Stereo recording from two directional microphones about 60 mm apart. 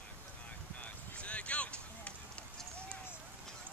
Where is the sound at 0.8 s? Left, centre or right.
Left.